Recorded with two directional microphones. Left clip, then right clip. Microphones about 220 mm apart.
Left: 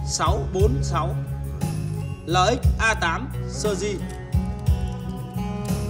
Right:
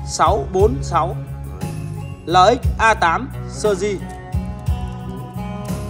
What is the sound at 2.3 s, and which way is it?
Speech, 10° left (ahead or behind).